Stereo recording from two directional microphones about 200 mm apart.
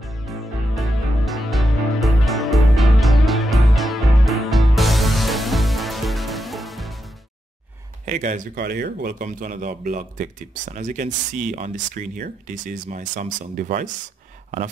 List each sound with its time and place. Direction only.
0.3 s music: centre (ahead or behind)
8.0 s speech: 40° right (ahead or behind)